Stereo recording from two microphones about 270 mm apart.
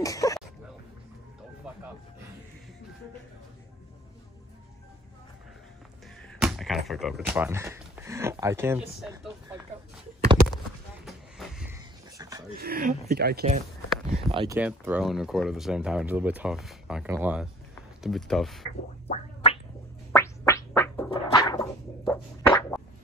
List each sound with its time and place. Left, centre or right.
0.0 s speech: centre
6.4 s a sound: centre
6.9 s speech: centre
9.2 s vehicle: centre
11.1 s a sound: centre
12.4 s speech: right
14.1 s speech: centre
14.6 s speech: centre
19.0 s scratch: left
20.1 s a sound: centre